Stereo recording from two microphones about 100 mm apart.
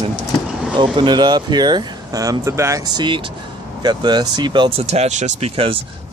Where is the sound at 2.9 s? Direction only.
50° right (ahead or behind).